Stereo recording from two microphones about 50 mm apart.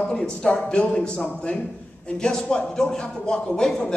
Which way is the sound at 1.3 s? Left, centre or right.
Left.